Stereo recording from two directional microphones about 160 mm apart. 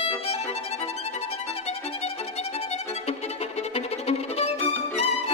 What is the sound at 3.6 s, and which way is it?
Violin, 40° left (ahead or behind).